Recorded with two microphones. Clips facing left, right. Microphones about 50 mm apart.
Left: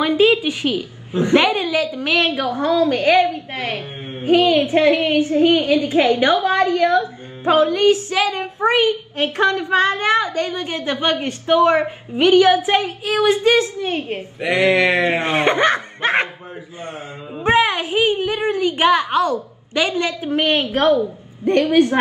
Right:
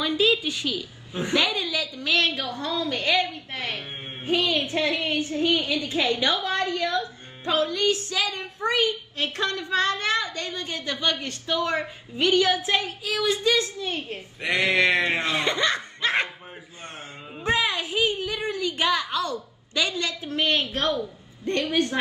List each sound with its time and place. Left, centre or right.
0.0 s a woman's voice: left
2.1 s a woman's voice: left
2.4 s a woman's voice: left
14.4 s speech: centre
15.1 s a woman's voice: left
17.5 s a woman's voice: left